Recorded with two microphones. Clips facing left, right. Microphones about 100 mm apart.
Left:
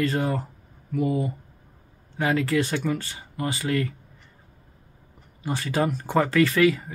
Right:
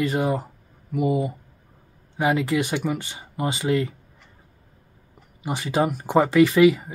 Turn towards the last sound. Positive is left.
turn(degrees=-15)  # may be behind; listen again after turning